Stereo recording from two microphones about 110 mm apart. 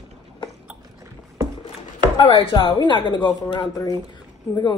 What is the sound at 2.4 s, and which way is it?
Speech, 50° left (ahead or behind).